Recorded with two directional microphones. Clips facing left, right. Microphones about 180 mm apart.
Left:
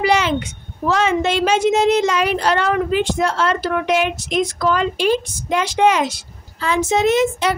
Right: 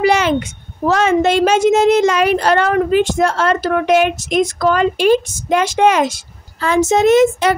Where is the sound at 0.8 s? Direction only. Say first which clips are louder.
Right 4 dB; 45° right (ahead or behind).